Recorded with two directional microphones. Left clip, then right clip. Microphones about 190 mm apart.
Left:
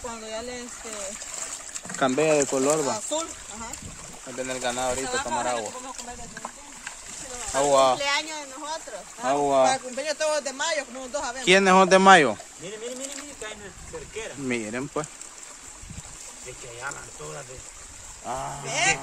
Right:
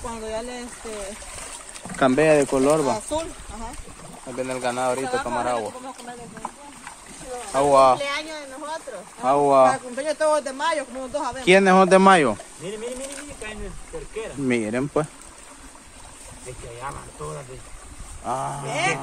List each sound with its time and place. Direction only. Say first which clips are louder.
0.0 s speech: right 4 dB; 5° right (ahead or behind)
2.0 s speech: right 4 dB; centre (ahead or behind)
4.4 s speech: right 3 dB; 5° right (ahead or behind)
5.0 s speech: right 3 dB; 40° left (ahead or behind)
5.4 s speech: right 3 dB; 10° right (ahead or behind)
7.5 s speech: right 4 dB; 5° right (ahead or behind)
8.0 s speech: left 1 dB; 30° left (ahead or behind)
9.2 s speech: right 5 dB; 5° right (ahead or behind)
9.9 s a man's voice: right 5 dB; 65° left (ahead or behind)
11.4 s speech: right 2 dB; 10° left (ahead or behind)
14.5 s speech: right 7 dB; 15° right (ahead or behind)
18.2 s speech: right 5 dB; 5° right (ahead or behind)
18.7 s a man's voice: left 1 dB; 55° left (ahead or behind)